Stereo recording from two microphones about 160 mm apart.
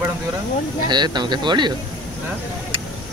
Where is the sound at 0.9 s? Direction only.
25° right (ahead or behind).